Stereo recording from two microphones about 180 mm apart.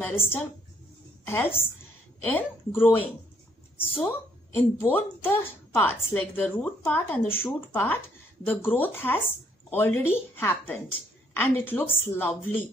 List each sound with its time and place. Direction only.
0.0 s a woman's voice: 10° left (ahead or behind)
4.6 s speech: 10° left (ahead or behind)